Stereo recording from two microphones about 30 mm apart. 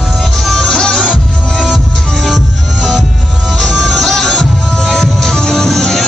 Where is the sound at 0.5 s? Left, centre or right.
Centre.